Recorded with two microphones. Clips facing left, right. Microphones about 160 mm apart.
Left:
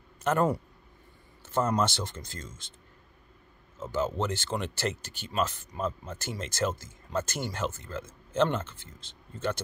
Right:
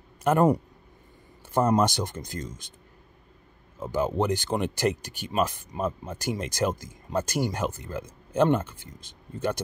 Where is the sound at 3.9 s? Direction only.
15° right (ahead or behind).